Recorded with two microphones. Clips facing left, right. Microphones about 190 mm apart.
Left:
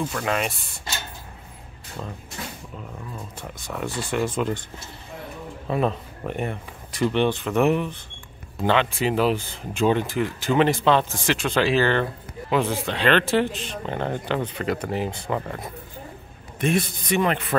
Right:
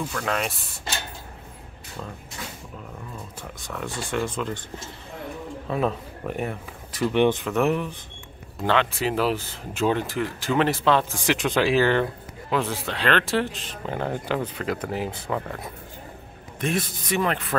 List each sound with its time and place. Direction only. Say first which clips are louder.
0.1 s speech: left 2 dB; 5° left (ahead or behind)
3.7 s speech: left 2 dB; 10° left (ahead or behind)
5.7 s speech: left 2 dB; centre (ahead or behind)
7.2 s speech: right 4 dB; 15° right (ahead or behind)
7.4 s speech: left 2 dB; centre (ahead or behind)
11.2 s speech: right 2 dB; 15° right (ahead or behind)
12.4 s speech: left 3 dB; centre (ahead or behind)
16.5 s speech: left 4 dB; centre (ahead or behind)